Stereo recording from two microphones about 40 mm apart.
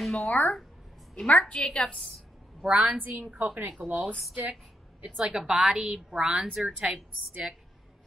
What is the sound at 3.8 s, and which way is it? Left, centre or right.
Speech, right.